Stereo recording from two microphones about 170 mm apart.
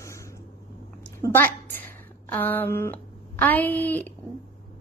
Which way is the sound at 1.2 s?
15° left (ahead or behind).